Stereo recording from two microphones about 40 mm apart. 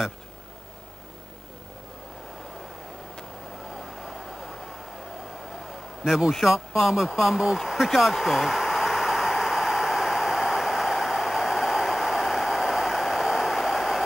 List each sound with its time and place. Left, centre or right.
3.7 s vehicle: centre
6.0 s a man's voice: centre
6.4 s a sound: centre